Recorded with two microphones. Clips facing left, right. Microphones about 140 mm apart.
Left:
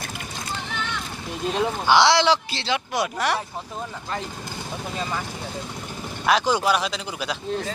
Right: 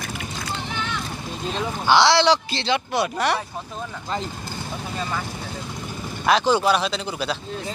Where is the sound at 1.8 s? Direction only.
15° left (ahead or behind).